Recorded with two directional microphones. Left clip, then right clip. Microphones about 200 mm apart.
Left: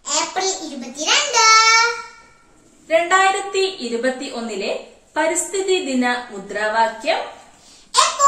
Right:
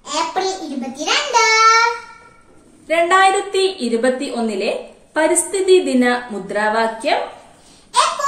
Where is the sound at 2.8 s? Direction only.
55° right (ahead or behind).